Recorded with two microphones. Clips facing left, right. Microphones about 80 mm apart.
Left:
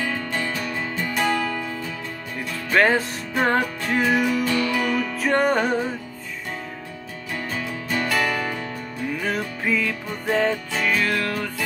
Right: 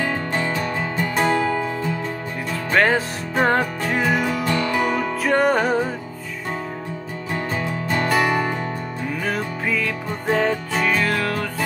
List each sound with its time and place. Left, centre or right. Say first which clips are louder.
0.0 s music: right 3 dB; right
2.7 s music: even; centre
4.2 s music: even; right
5.2 s music: right 2 dB; centre
7.3 s music: right 4 dB; right
9.2 s music: right 2 dB; centre
10.3 s music: right 1 dB; centre